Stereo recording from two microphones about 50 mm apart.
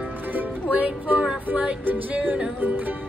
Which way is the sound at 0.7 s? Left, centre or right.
Right.